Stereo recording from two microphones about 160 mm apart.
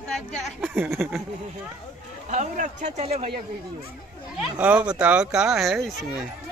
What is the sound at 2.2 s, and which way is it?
Speech, 50° right (ahead or behind).